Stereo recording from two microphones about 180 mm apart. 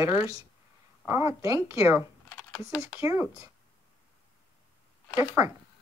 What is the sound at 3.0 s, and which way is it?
Speech, 15° right (ahead or behind).